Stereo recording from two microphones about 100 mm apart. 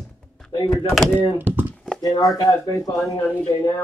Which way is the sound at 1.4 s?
20° right (ahead or behind).